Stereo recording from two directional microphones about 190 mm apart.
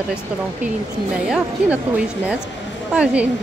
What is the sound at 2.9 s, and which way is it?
Speech, 5° right (ahead or behind).